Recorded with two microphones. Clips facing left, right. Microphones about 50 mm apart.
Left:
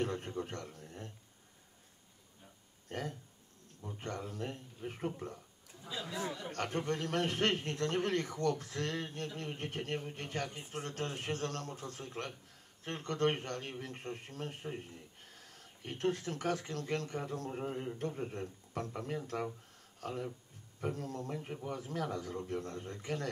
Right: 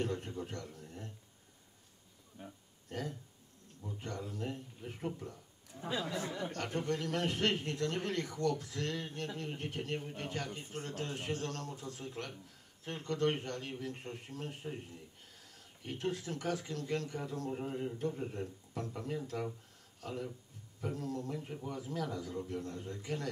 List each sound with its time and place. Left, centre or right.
0.0 s speech: left
2.4 s speech: right
2.9 s speech: left
5.8 s speech: right
6.5 s a man's voice: left
17.5 s a man's voice: centre
17.9 s speech: left